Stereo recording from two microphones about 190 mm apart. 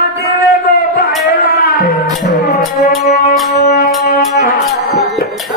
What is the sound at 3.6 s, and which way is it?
Music, 50° left (ahead or behind).